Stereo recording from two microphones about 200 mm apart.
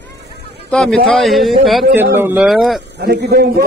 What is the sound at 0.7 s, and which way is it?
A man's voice, centre (ahead or behind).